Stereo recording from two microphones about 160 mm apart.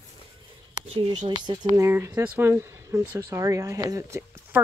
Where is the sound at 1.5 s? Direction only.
25° right (ahead or behind).